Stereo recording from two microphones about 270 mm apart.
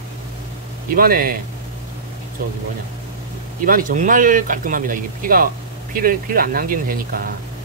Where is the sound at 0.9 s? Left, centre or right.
Right.